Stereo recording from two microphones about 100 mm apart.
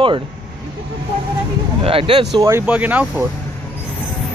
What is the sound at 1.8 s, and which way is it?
Speech, 65° right (ahead or behind).